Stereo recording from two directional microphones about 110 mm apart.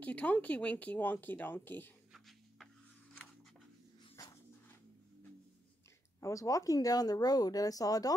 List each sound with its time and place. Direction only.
0.0 s speech: 15° left (ahead or behind)
2.1 s a sound: centre (ahead or behind)
6.2 s speech: 30° left (ahead or behind)